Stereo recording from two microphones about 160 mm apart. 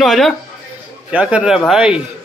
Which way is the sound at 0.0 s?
Centre (ahead or behind).